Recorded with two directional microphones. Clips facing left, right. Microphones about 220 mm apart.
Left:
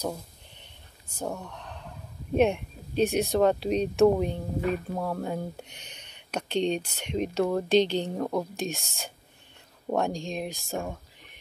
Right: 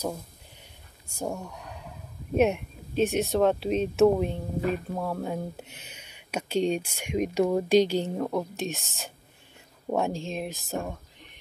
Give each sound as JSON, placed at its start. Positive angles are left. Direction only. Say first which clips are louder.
{"t": 0.0, "sound": "speech", "louder": "even", "side_deg": -5}